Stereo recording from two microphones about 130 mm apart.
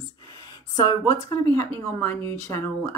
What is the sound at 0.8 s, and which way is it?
Speech, 30° left (ahead or behind).